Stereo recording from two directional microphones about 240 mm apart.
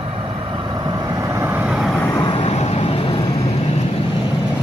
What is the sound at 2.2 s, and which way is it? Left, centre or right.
Vehicle, left.